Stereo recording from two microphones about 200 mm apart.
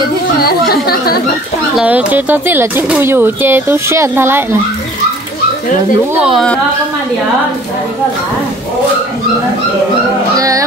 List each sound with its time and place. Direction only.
0.4 s a sound: 50° left (ahead or behind)
1.8 s speech: 5° right (ahead or behind)
6.2 s a woman's voice: centre (ahead or behind)
10.3 s speech: 15° right (ahead or behind)